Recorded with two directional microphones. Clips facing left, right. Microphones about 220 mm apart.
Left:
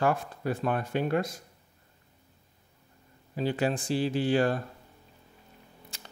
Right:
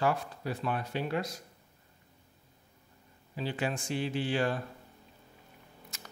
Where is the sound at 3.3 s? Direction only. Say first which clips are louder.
Left 6 dB; 45° left (ahead or behind).